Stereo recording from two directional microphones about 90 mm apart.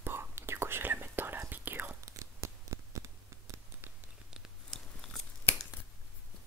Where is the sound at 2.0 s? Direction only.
35° right (ahead or behind).